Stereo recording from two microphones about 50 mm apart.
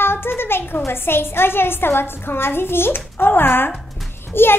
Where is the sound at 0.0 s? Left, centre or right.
Left.